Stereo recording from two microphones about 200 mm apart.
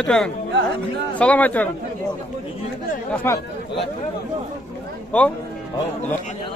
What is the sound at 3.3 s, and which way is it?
Speech, 10° left (ahead or behind).